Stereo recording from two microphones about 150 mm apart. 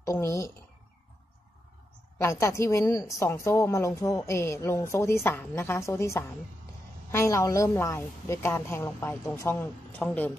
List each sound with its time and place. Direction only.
0.0 s speech: 20° left (ahead or behind)
2.4 s a woman's voice: 20° left (ahead or behind)